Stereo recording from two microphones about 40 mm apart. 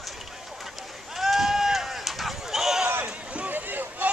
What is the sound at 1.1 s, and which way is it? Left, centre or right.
Run, centre.